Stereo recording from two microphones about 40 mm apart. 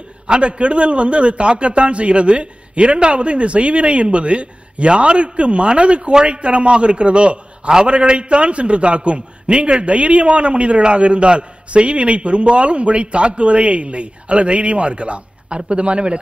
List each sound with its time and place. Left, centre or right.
0.3 s a man's voice: right